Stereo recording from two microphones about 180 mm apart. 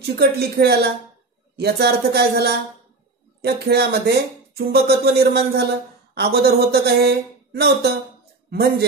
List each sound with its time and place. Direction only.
0.0 s speech: 60° right (ahead or behind)